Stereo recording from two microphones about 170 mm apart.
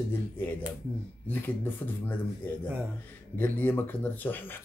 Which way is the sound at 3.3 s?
10° left (ahead or behind).